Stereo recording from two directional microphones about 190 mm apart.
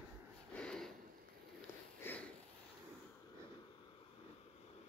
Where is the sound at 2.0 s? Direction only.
10° left (ahead or behind).